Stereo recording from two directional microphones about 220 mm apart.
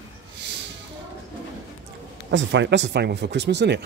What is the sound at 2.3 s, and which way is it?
Speech, 55° right (ahead or behind).